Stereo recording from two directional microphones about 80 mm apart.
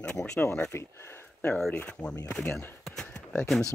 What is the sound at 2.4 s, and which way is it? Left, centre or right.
Speech, left.